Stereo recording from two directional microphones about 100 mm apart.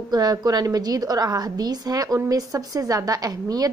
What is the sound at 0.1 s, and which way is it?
A woman's voice, 40° right (ahead or behind).